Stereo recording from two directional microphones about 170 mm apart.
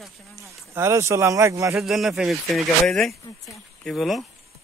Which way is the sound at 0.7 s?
15° right (ahead or behind).